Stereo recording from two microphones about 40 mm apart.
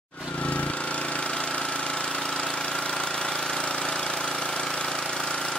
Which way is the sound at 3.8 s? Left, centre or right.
Centre.